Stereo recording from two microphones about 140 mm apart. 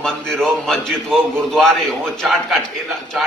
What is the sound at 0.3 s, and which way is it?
A man's voice, centre (ahead or behind).